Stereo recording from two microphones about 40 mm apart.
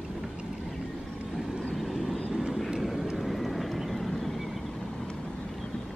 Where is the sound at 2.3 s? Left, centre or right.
Centre.